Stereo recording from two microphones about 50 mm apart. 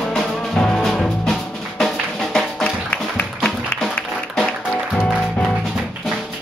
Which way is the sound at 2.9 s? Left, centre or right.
Left.